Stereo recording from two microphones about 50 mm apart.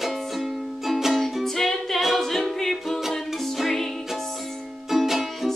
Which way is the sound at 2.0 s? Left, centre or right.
Centre.